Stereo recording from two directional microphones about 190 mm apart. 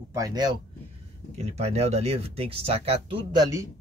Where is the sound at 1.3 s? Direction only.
35° right (ahead or behind).